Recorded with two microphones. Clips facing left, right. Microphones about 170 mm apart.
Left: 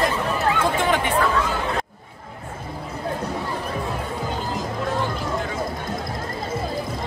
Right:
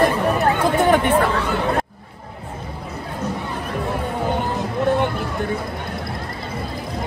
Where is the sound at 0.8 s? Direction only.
50° right (ahead or behind).